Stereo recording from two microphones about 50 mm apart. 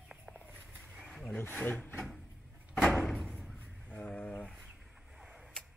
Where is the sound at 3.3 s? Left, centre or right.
Centre.